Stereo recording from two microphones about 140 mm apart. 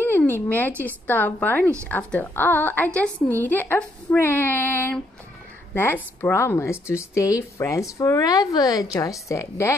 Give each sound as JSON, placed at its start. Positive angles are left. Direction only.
{"t": 0.0, "sound": "a woman's voice", "side_deg": 15}